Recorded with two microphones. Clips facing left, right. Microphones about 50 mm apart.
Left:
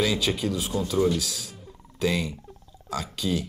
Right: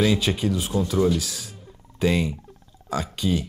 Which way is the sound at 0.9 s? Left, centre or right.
Centre.